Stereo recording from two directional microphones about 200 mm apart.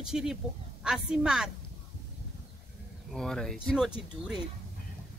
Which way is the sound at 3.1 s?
Centre (ahead or behind).